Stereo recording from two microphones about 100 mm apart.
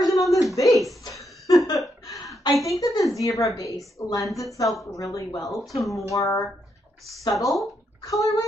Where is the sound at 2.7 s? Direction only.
35° left (ahead or behind).